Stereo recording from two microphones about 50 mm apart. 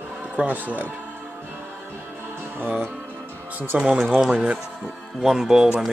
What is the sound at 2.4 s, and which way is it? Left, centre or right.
Music, right.